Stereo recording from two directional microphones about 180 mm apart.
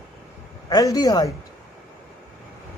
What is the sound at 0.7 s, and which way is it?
Speech, 20° left (ahead or behind).